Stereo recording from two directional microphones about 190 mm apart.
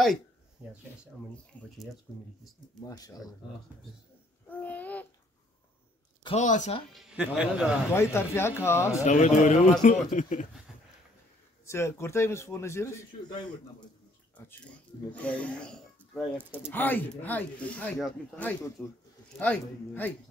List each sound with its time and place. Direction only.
1.5 s speech: 10° left (ahead or behind)
2.8 s speech: 20° left (ahead or behind)
4.5 s speech: 10° left (ahead or behind)
6.2 s speech: 40° left (ahead or behind)
6.9 s speech: 5° right (ahead or behind)
7.9 s speech: 15° left (ahead or behind)
9.0 s speech: 40° left (ahead or behind)
11.6 s speech: 15° left (ahead or behind)
15.1 s speech: 5° left (ahead or behind)
16.3 s speech: 10° right (ahead or behind)
16.7 s speech: 10° left (ahead or behind)